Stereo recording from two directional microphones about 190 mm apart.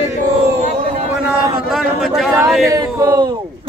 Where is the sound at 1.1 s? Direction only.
5° right (ahead or behind).